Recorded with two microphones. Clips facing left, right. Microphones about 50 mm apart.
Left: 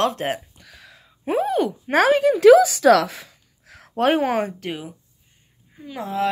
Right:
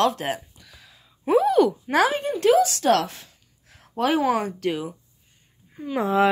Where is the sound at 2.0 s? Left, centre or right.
Left.